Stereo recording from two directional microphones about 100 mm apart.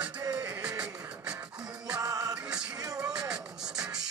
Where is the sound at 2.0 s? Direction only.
35° right (ahead or behind).